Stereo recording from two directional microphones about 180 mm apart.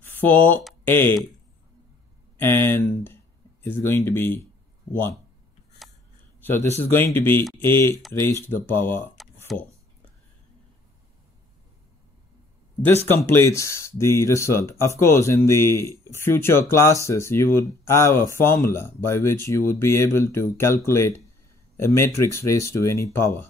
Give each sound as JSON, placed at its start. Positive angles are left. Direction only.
{"t": 0.0, "sound": "a sound", "side_deg": 10}
{"t": 0.8, "sound": "speech", "side_deg": 10}
{"t": 2.3, "sound": "speech", "side_deg": 10}
{"t": 6.4, "sound": "speech", "side_deg": 10}
{"t": 9.5, "sound": "speech", "side_deg": 0}
{"t": 12.8, "sound": "speech", "side_deg": 15}